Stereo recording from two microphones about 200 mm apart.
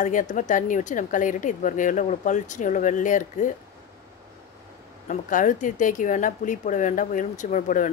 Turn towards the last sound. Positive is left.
turn(degrees=40)  # may be behind; listen again after turning